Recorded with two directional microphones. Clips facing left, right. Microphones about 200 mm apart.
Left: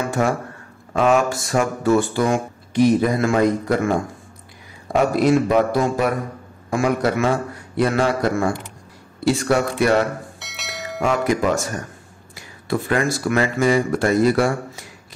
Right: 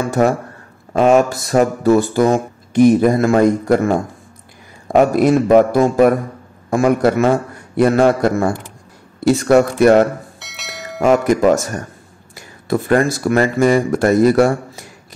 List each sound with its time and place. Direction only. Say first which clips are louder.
0.2 s speech: right 8 dB; 40° right (ahead or behind)
4.9 s speech: right 4 dB; 50° right (ahead or behind)
10.4 s church bell: even; centre (ahead or behind)
11.0 s speech: right 6 dB; 50° right (ahead or behind)
12.6 s speech: right 6 dB; 45° right (ahead or behind)